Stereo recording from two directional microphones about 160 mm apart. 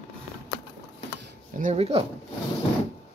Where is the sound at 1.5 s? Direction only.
45° right (ahead or behind).